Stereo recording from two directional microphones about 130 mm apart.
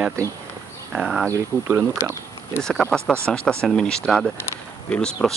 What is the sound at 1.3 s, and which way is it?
Speech, 20° right (ahead or behind).